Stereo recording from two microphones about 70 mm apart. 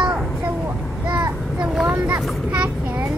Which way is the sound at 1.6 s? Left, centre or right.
Centre.